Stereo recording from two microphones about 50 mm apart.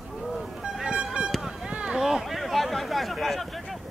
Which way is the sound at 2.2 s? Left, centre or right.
Centre.